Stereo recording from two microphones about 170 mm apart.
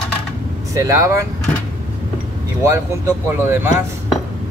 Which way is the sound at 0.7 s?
20° right (ahead or behind).